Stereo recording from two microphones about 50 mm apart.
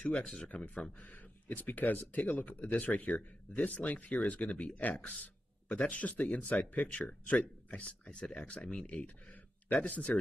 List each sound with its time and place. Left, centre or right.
0.0 s speech: left